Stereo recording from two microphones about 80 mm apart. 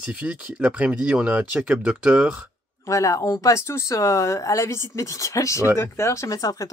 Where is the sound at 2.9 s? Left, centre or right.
Left.